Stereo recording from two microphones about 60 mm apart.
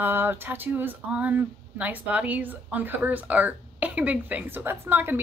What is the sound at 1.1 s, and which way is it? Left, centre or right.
A woman's voice, right.